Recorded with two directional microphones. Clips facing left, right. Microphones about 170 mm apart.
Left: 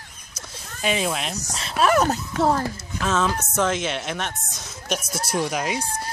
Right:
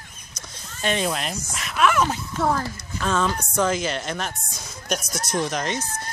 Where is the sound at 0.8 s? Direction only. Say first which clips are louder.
Even; 5° left (ahead or behind).